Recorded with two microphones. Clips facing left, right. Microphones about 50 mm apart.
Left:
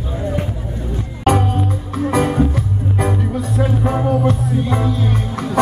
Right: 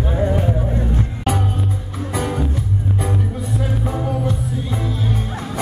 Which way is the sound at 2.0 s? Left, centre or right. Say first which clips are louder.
Left 7 dB; left.